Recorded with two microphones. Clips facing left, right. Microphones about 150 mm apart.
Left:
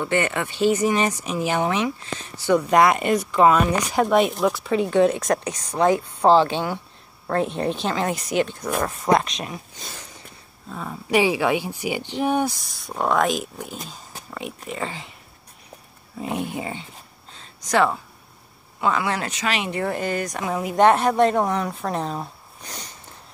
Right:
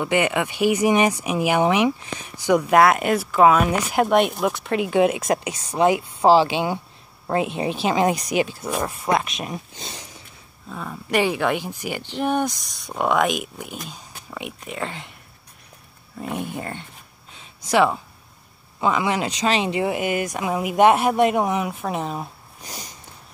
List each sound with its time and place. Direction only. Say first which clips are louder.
0.0 s speech: right 2 dB; 15° right (ahead or behind)
9.5 s speech: right 3 dB; 25° right (ahead or behind)
10.7 s speech: left 2 dB; 5° left (ahead or behind)
13.7 s speech: even; 35° left (ahead or behind)
14.3 s speech: left 1 dB; 5° right (ahead or behind)
16.2 s speech: left 1 dB; 5° left (ahead or behind)
17.4 s a sound: right 2 dB; 10° right (ahead or behind)
18.8 s speech: right 2 dB; 15° right (ahead or behind)
19.4 s speech: right 5 dB; 30° right (ahead or behind)
19.7 s speech: right 2 dB; 10° right (ahead or behind)